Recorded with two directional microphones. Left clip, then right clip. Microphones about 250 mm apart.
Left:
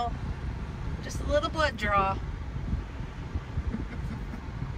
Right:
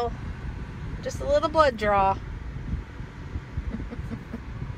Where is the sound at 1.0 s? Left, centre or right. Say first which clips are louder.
Right 5 dB; right.